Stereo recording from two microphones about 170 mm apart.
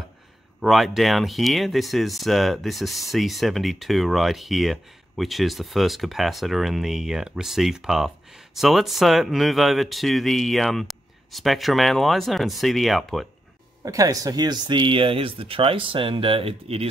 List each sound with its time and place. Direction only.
0.6 s speech: centre (ahead or behind)
13.8 s speech: 20° right (ahead or behind); by 16.9 s 35° right (ahead or behind)